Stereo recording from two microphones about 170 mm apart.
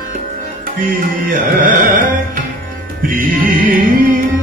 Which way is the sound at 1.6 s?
55° right (ahead or behind).